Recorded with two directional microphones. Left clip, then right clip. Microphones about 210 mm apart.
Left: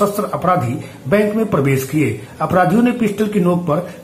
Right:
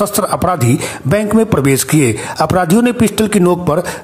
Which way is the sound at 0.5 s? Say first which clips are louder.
Right 2 dB; 50° right (ahead or behind).